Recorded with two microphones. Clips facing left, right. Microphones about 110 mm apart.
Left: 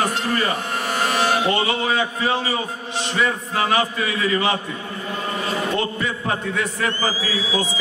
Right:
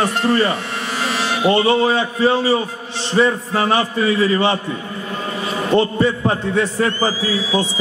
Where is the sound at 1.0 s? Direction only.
50° left (ahead or behind).